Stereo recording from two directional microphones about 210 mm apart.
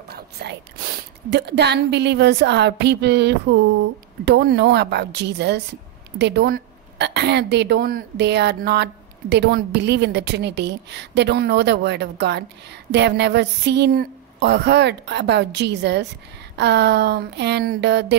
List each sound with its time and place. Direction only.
0.1 s whispering: 50° right (ahead or behind)
1.3 s a woman's voice: 55° right (ahead or behind)